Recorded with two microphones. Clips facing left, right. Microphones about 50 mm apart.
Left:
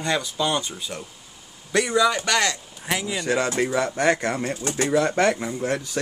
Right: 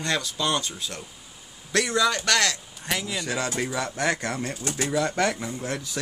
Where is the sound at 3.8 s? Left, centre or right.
Centre.